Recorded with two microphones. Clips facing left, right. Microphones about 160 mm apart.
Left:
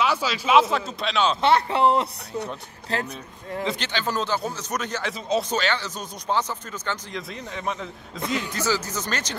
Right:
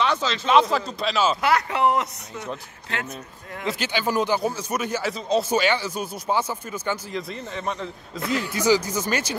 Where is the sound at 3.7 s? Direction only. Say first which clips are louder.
Right 4 dB; 10° right (ahead or behind).